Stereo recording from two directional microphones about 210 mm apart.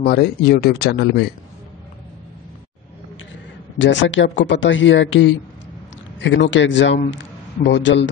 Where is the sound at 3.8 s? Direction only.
65° left (ahead or behind).